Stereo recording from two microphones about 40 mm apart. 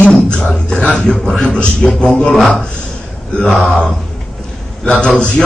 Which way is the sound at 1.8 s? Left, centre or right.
Centre.